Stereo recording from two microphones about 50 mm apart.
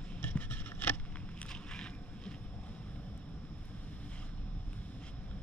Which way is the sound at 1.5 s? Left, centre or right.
Centre.